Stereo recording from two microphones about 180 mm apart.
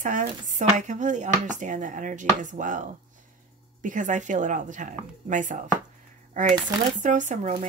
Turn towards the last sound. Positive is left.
turn(degrees=-40)  # may be behind; listen again after turning